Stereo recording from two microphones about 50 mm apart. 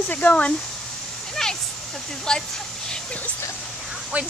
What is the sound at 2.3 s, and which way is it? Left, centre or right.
Speech, centre.